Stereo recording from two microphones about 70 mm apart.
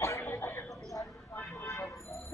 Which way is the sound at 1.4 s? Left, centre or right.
Left.